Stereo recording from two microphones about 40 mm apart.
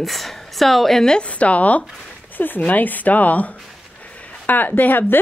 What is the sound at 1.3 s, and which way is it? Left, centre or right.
Speech, left.